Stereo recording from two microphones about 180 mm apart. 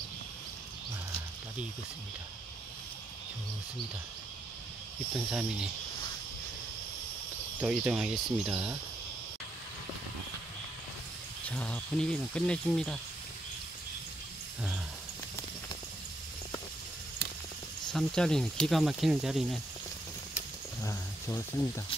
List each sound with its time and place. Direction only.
5.1 s speech: 5° right (ahead or behind)
7.6 s speech: 5° right (ahead or behind)
11.4 s speech: 5° left (ahead or behind)
17.9 s speech: 5° left (ahead or behind)
20.8 s speech: 15° left (ahead or behind)